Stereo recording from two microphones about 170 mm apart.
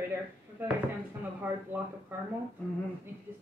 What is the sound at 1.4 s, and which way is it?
Speech, 15° right (ahead or behind).